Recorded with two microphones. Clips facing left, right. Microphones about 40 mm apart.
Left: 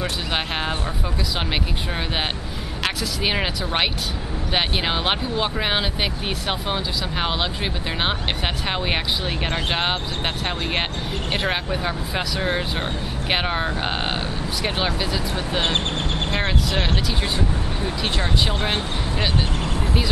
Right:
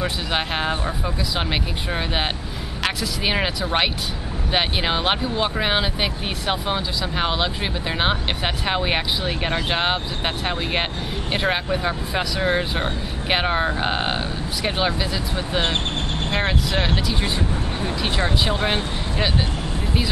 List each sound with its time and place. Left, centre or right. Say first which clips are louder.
0.3 s speech: right 2 dB; centre